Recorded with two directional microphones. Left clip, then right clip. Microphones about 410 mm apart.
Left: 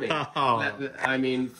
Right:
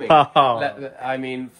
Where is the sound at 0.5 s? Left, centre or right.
Right.